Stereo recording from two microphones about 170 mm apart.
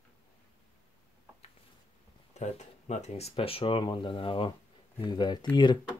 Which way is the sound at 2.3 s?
40° left (ahead or behind).